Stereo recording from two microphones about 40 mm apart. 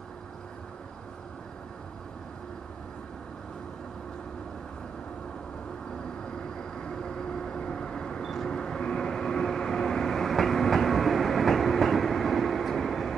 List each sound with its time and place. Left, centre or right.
6.6 s vehicle: centre
8.2 s vehicle: centre
8.5 s vehicle: centre